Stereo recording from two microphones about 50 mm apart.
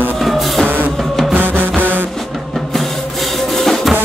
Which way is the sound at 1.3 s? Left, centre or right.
Right.